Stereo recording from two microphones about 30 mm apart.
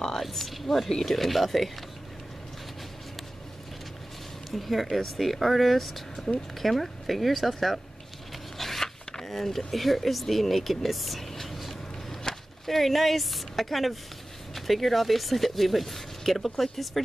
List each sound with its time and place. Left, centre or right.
0.2 s speech: centre
4.5 s speech: centre
8.5 s a sound: centre
9.7 s speech: centre